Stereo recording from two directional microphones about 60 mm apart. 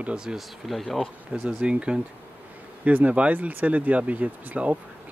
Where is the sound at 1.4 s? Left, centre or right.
Centre.